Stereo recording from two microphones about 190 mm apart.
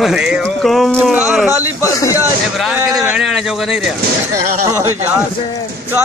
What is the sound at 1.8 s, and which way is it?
Speech, 15° left (ahead or behind).